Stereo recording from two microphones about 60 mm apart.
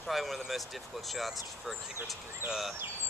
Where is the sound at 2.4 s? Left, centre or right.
Right.